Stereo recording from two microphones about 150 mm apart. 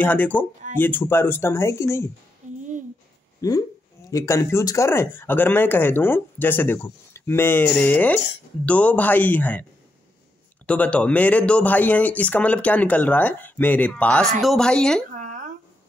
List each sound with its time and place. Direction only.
0.0 s speech: 10° left (ahead or behind)
3.3 s speech: 25° left (ahead or behind)
10.7 s speech: 10° left (ahead or behind)
15.1 s a sound: 55° right (ahead or behind)